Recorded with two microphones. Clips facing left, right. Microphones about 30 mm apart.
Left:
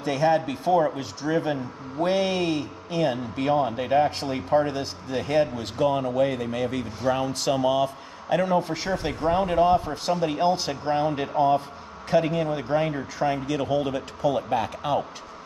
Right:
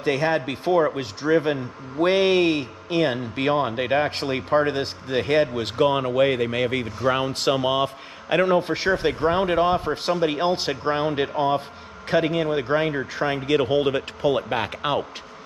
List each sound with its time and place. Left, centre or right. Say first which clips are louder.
0.0 s speech: even; right
13.5 s speech: right 5 dB; right